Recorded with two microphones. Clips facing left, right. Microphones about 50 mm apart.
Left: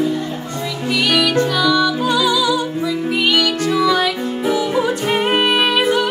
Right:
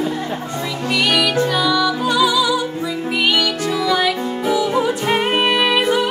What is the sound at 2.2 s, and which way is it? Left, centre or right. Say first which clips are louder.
Music: right 2 dB; centre.